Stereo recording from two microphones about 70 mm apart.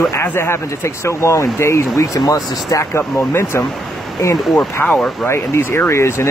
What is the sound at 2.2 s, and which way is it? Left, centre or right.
Speech, left.